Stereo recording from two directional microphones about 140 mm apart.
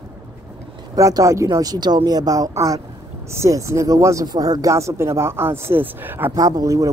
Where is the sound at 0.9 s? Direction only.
25° right (ahead or behind).